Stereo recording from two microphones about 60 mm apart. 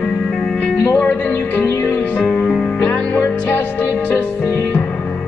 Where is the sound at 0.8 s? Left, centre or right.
Left.